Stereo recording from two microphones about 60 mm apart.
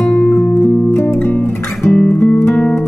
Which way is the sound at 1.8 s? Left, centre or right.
Centre.